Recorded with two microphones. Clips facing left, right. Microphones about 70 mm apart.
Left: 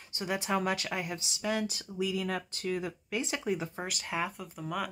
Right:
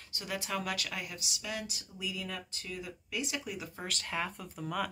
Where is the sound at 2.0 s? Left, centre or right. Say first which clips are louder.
Left 8 dB; left.